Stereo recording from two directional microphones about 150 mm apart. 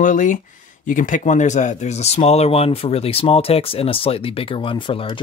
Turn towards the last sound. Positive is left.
turn(degrees=35)  # may be behind; listen again after turning